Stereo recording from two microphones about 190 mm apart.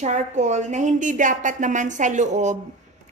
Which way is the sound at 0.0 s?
40° right (ahead or behind).